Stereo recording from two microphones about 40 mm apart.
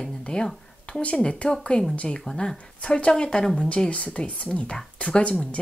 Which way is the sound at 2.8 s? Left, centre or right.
Left.